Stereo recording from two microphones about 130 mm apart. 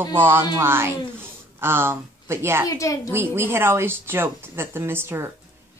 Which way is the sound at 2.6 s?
25° left (ahead or behind).